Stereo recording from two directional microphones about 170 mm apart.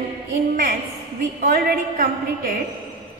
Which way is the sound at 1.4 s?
55° right (ahead or behind).